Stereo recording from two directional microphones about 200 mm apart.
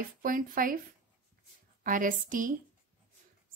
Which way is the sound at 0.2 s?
45° right (ahead or behind).